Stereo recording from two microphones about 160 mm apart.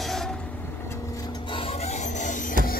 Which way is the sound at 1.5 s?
35° left (ahead or behind).